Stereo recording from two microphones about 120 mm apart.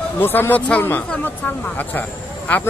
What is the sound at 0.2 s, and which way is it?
Speech, 15° left (ahead or behind).